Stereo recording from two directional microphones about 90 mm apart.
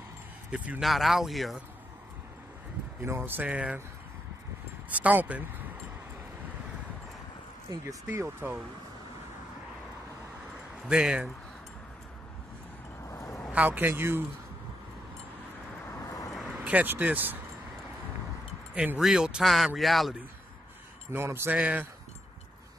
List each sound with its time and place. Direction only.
0.7 s speech: centre (ahead or behind)
3.0 s a man's voice: 25° right (ahead or behind)
4.8 s speech: 15° right (ahead or behind)
8.2 s a man's voice: 20° right (ahead or behind)
10.9 s speech: 10° right (ahead or behind)
13.0 s a sound: 35° left (ahead or behind)
13.5 s a man's voice: 20° right (ahead or behind)
16.3 s vehicle: centre (ahead or behind)
16.5 s speech: 15° right (ahead or behind)
18.9 s speech: 5° right (ahead or behind)
21.1 s a man's voice: 30° right (ahead or behind)
21.5 s speech: 15° right (ahead or behind)